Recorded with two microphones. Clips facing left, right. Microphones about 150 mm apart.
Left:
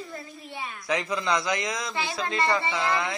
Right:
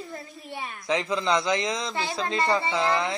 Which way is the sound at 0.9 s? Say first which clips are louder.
Right 2 dB; 25° right (ahead or behind).